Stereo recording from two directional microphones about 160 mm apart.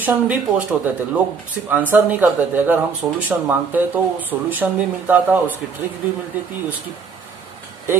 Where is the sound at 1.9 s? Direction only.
10° right (ahead or behind).